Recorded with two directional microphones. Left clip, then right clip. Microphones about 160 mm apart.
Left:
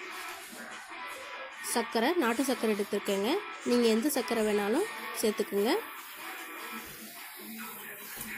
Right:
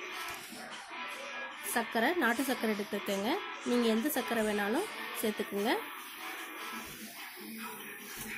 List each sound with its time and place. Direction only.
1.7 s speech: 10° left (ahead or behind)